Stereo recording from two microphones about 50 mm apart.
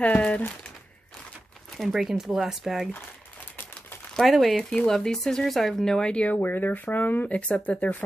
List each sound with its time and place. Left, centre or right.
0.0 s crumpling: left
1.8 s speech: centre
4.2 s speech: centre
5.9 s speech: centre
6.3 s speech: left